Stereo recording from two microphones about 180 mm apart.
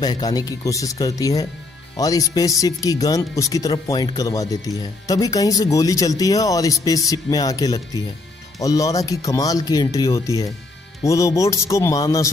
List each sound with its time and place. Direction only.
0.0 s speech: 20° left (ahead or behind)